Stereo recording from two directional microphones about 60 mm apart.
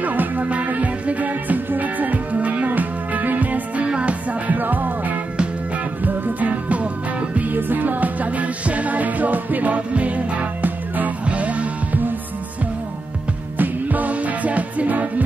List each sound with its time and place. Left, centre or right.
0.0 s music: right
13.6 s music: right